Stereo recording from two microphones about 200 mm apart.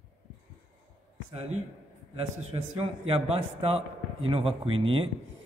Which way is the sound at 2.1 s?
30° right (ahead or behind).